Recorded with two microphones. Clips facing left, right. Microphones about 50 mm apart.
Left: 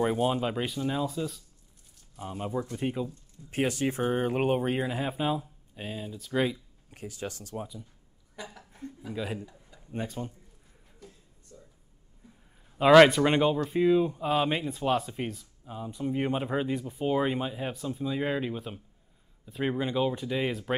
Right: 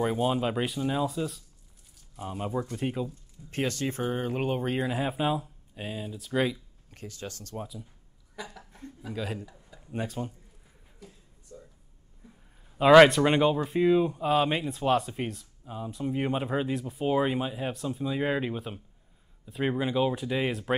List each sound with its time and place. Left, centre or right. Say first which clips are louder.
0.0 s speech: even; centre
3.4 s speech: left 2 dB; centre
4.2 s speech: left 5 dB; left
4.7 s speech: right 1 dB; centre
6.5 s a sound: even; centre
7.2 s speech: left 3 dB; centre
7.5 s speech: even; centre
11.5 s a sound: right 5 dB; centre
13.7 s speech: even; centre